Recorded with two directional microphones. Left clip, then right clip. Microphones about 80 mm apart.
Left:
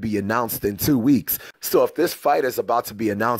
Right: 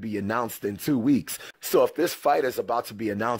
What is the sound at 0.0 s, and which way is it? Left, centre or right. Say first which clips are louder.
Speech: left 5 dB; left.